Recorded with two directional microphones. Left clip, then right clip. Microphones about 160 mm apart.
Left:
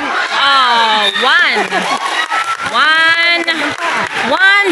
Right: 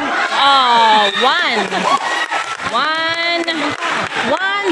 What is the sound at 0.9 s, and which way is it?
Speech, 15° right (ahead or behind).